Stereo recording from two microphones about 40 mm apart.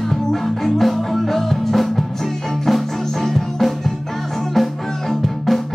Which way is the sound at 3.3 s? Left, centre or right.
Centre.